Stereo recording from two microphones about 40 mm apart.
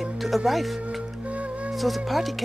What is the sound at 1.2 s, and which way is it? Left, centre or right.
Music, right.